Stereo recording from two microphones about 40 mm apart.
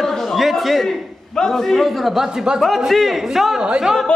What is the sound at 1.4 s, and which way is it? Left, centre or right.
Speech, centre.